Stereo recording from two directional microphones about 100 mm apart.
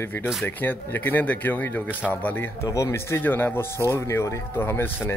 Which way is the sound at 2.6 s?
40° left (ahead or behind).